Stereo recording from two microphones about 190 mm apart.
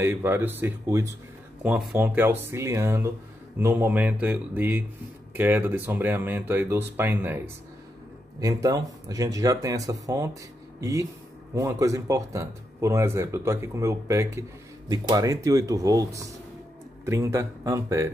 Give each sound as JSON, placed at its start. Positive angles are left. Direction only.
{"t": 0.0, "sound": "speech", "side_deg": -15}